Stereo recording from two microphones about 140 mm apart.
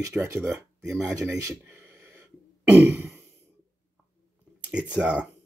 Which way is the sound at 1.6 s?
15° right (ahead or behind).